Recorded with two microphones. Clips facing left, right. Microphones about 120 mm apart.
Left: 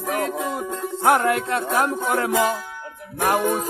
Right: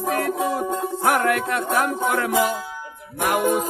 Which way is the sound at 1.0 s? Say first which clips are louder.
Left 3 dB; 20° left (ahead or behind).